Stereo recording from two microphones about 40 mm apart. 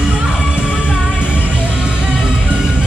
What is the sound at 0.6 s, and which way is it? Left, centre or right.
Music, right.